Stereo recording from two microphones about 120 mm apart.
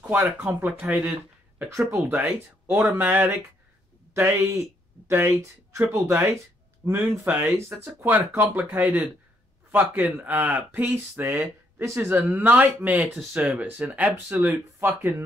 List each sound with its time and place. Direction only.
0.1 s speech: 15° right (ahead or behind)